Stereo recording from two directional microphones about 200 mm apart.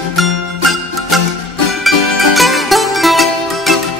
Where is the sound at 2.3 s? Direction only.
Centre (ahead or behind).